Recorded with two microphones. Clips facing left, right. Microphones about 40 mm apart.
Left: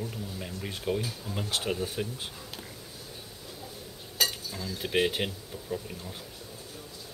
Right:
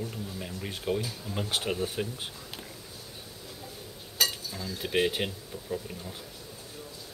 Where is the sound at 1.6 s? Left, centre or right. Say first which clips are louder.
Right 1 dB; centre.